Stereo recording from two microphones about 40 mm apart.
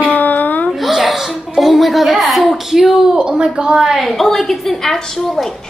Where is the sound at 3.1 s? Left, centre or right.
Right.